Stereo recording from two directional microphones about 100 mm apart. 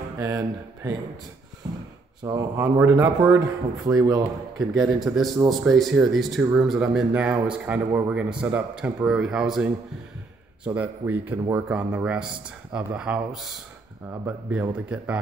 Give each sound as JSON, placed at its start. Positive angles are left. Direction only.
{"t": 0.2, "sound": "speech", "side_deg": -35}
{"t": 2.5, "sound": "speech", "side_deg": -30}
{"t": 4.6, "sound": "speech", "side_deg": -5}
{"t": 14.2, "sound": "speech", "side_deg": -20}
{"t": 14.9, "sound": "speech", "side_deg": -10}